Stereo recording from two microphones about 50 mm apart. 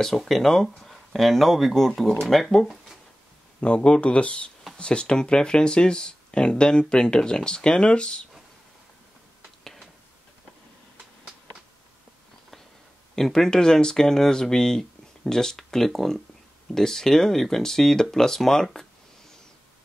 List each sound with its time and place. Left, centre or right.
0.0 s speech: centre
3.6 s speech: left
13.1 s speech: centre